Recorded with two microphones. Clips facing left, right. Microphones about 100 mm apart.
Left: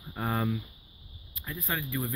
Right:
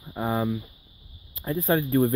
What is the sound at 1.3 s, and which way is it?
Speech, 35° right (ahead or behind).